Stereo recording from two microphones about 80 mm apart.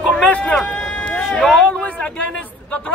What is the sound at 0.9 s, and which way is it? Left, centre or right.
Run, centre.